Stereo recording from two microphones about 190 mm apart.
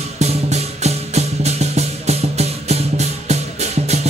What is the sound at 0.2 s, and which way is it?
Music, 35° right (ahead or behind).